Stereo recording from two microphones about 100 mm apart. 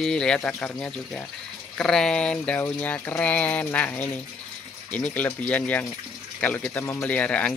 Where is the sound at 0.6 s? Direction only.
20° left (ahead or behind).